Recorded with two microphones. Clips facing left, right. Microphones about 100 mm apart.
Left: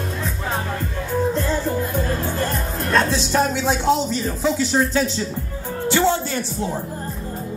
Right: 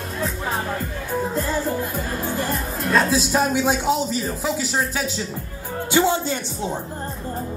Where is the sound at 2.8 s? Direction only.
5° right (ahead or behind).